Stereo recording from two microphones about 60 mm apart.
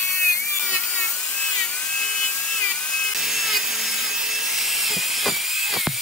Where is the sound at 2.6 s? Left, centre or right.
Centre.